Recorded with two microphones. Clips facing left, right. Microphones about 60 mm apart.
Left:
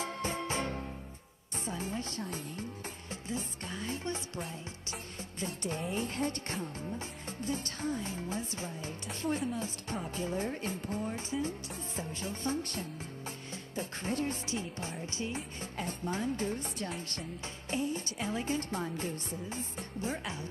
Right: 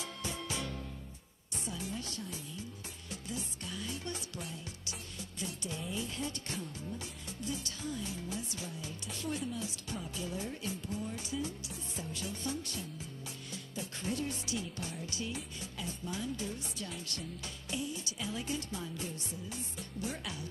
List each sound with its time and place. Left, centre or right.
0.0 s music: left
3.1 s music: left
5.7 s music: left